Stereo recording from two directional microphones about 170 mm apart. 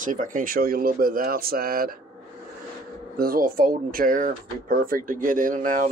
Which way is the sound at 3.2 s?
60° right (ahead or behind).